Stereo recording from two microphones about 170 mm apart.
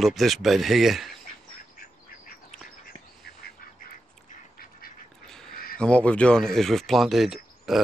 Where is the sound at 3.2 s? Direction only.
65° left (ahead or behind).